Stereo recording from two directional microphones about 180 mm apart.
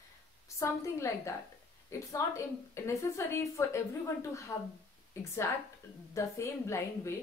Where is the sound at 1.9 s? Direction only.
15° left (ahead or behind).